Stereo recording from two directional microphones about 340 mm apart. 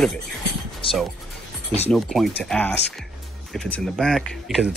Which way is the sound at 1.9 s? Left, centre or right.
Centre.